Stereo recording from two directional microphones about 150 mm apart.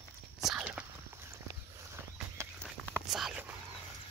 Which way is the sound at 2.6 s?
Centre (ahead or behind).